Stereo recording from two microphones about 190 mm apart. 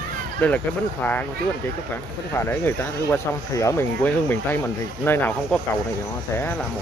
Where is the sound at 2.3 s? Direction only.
10° left (ahead or behind).